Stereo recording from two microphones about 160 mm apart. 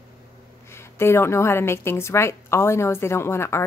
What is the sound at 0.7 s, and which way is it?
A woman's voice, 15° left (ahead or behind).